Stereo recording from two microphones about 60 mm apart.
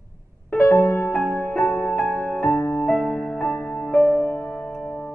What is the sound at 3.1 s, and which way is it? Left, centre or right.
Music, centre.